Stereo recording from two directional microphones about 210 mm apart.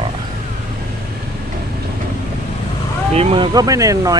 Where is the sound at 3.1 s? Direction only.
25° right (ahead or behind).